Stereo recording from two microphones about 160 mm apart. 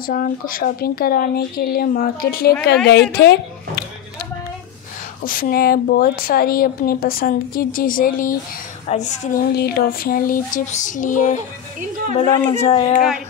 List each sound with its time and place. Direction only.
0.0 s speech: 65° left (ahead or behind)
2.9 s a woman's voice: 90° left
5.2 s a woman's voice: 60° left (ahead or behind)
8.8 s a woman's voice: 45° left (ahead or behind)
9.6 s a woman's voice: 75° left (ahead or behind); by 11.4 s 50° left (ahead or behind)
12.2 s speech: 35° left (ahead or behind)